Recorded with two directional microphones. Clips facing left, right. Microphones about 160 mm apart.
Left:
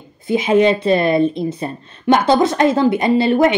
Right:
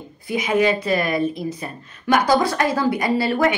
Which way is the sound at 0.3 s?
25° left (ahead or behind).